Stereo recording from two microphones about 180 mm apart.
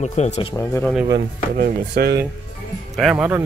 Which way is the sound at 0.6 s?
15° left (ahead or behind).